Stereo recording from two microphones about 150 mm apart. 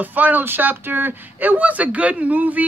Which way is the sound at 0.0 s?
10° right (ahead or behind).